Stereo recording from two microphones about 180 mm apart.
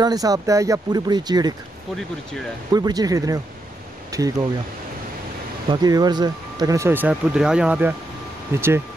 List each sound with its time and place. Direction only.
0.0 s speech: 20° right (ahead or behind)
2.7 s speech: 20° right (ahead or behind)
5.7 s speech: 20° right (ahead or behind)